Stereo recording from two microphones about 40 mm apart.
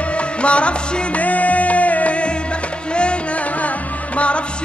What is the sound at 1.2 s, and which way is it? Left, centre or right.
Music, left.